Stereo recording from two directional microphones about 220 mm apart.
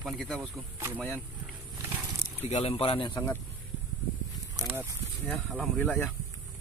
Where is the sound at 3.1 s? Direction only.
10° left (ahead or behind).